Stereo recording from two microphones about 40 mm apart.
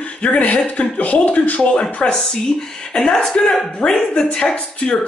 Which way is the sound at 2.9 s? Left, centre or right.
Centre.